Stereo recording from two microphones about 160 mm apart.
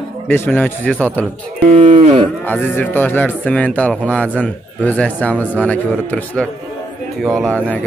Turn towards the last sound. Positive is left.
turn(degrees=5)  # may be behind; listen again after turning